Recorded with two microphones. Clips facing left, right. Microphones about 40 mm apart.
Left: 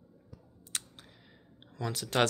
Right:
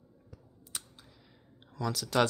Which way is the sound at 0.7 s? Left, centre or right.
Left.